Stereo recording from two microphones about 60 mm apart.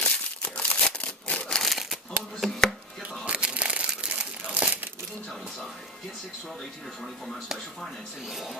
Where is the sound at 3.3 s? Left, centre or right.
Centre.